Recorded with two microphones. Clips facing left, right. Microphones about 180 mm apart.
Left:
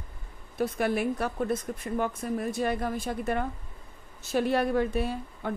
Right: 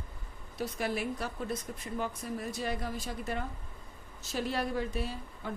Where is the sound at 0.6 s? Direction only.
55° left (ahead or behind).